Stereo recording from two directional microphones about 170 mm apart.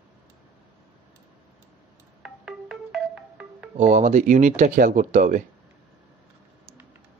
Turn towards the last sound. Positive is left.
turn(degrees=-45)  # may be behind; listen again after turning